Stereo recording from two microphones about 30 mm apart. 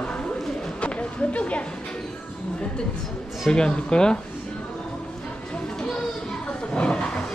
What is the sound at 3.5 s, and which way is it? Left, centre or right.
Speech, left.